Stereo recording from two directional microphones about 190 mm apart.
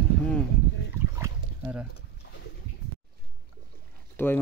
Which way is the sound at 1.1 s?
10° right (ahead or behind).